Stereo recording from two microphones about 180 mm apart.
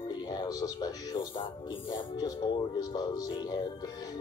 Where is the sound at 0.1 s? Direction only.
25° left (ahead or behind).